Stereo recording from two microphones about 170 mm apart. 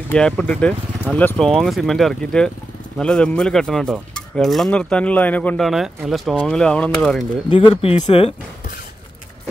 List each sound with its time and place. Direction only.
0.1 s speech: 5° left (ahead or behind)
1.1 s cutlery: 5° left (ahead or behind)
5.7 s cutlery: centre (ahead or behind)
7.4 s speech: 30° left (ahead or behind)